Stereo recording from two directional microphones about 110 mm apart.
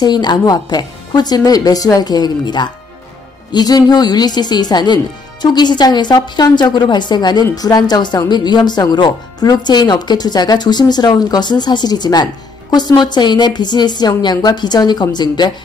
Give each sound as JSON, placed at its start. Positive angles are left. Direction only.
{"t": 0.0, "sound": "speech", "side_deg": 40}